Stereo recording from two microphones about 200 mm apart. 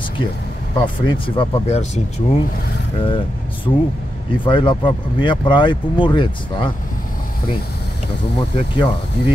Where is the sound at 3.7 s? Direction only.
15° left (ahead or behind).